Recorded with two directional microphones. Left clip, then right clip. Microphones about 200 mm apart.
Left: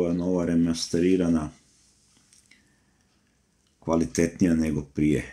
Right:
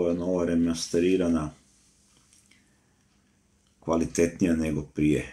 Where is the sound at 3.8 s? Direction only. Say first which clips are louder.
Even; 40° left (ahead or behind).